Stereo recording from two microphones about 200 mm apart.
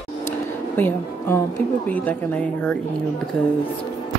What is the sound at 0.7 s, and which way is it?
A woman's voice, 10° left (ahead or behind).